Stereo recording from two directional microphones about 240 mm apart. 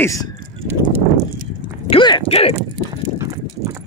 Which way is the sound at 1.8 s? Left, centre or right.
Centre.